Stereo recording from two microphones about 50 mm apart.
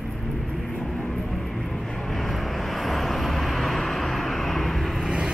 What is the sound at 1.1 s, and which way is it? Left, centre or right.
Vehicle, centre.